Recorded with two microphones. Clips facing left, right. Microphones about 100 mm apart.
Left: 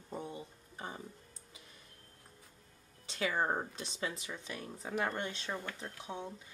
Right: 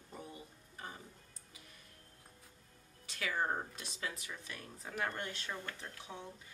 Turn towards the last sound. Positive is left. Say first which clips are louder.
# left 5 dB
turn(degrees=25)  # may be behind; listen again after turning